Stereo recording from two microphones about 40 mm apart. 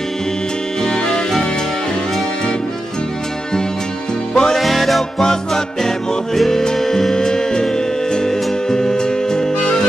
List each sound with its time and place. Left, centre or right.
0.8 s music: centre
4.3 s music: centre
4.6 s music: centre